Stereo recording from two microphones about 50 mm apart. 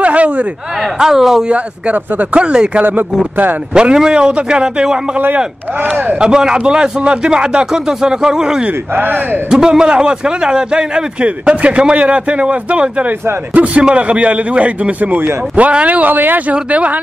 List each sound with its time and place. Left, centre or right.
0.0 s a sound: right
0.9 s a man's voice: centre
1.5 s a man's voice: right
6.2 s a man's voice: centre
8.9 s speech: right
9.5 s a man's voice: centre; by 15.3 s right
15.5 s a man's voice: right